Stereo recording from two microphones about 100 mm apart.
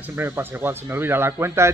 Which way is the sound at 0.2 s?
20° right (ahead or behind).